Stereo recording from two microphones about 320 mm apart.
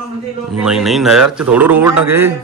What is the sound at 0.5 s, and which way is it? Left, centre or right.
A man's voice, centre.